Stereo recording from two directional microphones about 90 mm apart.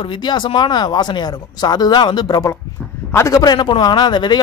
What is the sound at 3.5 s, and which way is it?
Speech, 60° left (ahead or behind).